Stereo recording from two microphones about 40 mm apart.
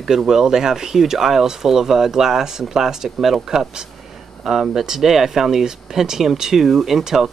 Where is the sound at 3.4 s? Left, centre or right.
Centre.